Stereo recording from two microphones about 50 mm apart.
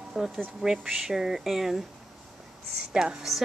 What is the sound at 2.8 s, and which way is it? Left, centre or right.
Speech, centre.